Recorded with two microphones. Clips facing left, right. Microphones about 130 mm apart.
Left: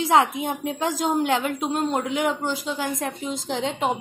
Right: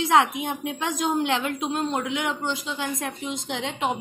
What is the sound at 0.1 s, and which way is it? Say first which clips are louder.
A woman's voice: left 2 dB; 35° left (ahead or behind).